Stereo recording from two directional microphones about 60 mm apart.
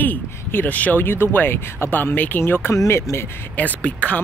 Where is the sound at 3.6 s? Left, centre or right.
Left.